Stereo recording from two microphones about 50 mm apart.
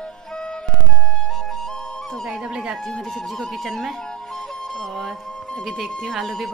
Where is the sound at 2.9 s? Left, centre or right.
Centre.